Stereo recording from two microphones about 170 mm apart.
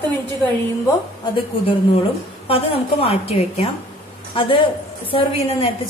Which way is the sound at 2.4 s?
35° left (ahead or behind).